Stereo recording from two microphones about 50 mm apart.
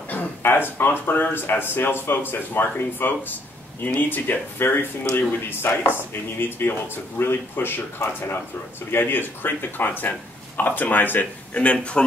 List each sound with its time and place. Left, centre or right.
0.4 s speech: left
11.5 s speech: left